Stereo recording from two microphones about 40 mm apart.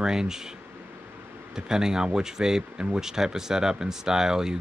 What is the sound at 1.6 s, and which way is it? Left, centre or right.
Speech, centre.